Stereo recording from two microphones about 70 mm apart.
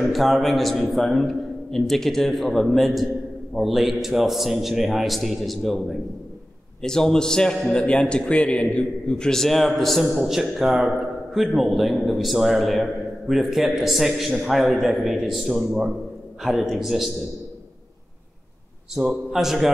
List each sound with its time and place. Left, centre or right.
0.1 s a man's voice: centre
18.9 s a man's voice: centre